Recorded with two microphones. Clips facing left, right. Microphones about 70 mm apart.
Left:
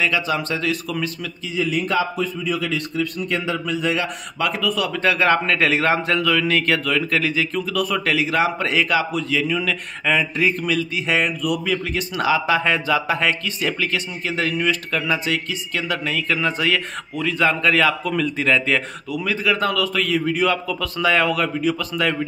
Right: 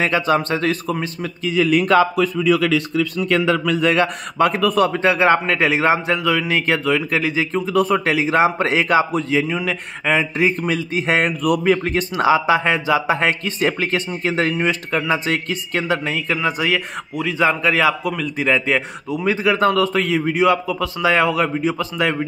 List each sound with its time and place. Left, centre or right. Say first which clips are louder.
0.0 s speech: right 4 dB; right
1.4 s a man's voice: right 6 dB; right
5.0 s a man's voice: left 2 dB; right
12.2 s a man's voice: right 3 dB; right
15.2 s speech: right 2 dB; right
16.1 s a man's voice: right 1 dB; centre
18.1 s a man's voice: left 1 dB; centre
19.1 s a man's voice: right 4 dB; right